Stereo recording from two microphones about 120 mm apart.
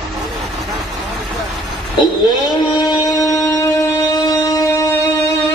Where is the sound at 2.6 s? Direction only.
40° left (ahead or behind).